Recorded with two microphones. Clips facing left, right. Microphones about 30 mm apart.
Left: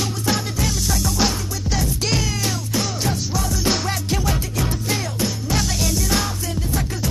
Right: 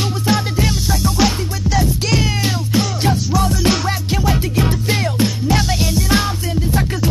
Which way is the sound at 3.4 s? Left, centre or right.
Right.